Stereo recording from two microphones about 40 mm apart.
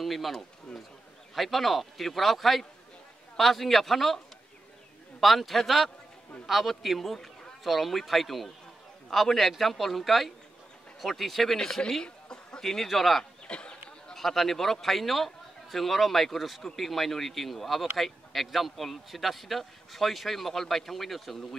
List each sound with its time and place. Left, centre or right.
0.0 s speech: centre
5.2 s speech: centre
11.9 s chuckle: centre
12.6 s speech: centre
13.2 s a sound: left
14.1 s speech: centre